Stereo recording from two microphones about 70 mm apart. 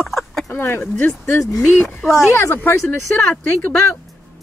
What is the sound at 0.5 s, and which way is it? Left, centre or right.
Speech, left.